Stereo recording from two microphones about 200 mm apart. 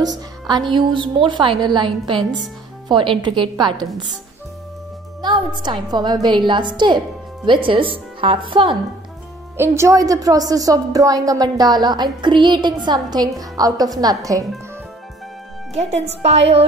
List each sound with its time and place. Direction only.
0.0 s a woman's voice: 20° right (ahead or behind)
5.2 s a woman's voice: 20° right (ahead or behind)
9.6 s a woman's voice: 15° right (ahead or behind)
15.7 s speech: 30° right (ahead or behind)